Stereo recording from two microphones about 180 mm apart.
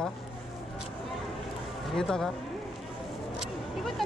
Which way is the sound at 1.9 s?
Centre (ahead or behind).